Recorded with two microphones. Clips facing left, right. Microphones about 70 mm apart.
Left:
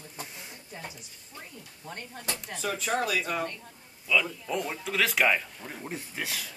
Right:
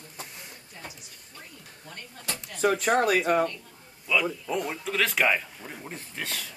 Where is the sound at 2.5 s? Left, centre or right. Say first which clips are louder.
Right 7 dB; right.